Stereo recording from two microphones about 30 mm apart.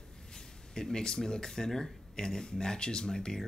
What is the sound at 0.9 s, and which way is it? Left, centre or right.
Speech, left.